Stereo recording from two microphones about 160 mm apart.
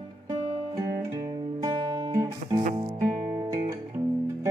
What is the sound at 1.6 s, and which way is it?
Music, 30° right (ahead or behind).